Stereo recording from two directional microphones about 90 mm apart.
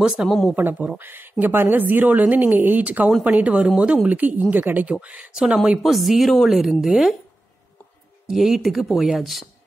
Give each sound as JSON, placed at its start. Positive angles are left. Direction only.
{"t": 0.0, "sound": "speech", "side_deg": -5}
{"t": 0.6, "sound": "a woman's voice", "side_deg": -15}
{"t": 3.1, "sound": "speech", "side_deg": 0}
{"t": 3.3, "sound": "speech", "side_deg": -15}
{"t": 8.3, "sound": "speech", "side_deg": 0}